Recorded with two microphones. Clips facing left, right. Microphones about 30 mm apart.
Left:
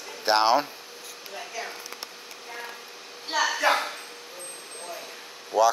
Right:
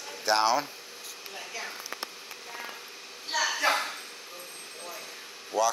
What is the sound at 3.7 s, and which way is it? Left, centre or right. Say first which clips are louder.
Bow-wow: left 3 dB; centre.